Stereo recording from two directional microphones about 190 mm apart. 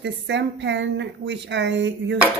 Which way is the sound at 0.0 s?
65° right (ahead or behind).